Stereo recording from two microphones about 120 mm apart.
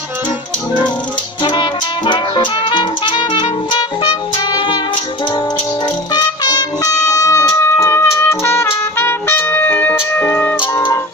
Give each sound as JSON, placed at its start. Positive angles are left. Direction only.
{"t": 1.4, "sound": "music", "side_deg": 40}
{"t": 6.1, "sound": "music", "side_deg": 35}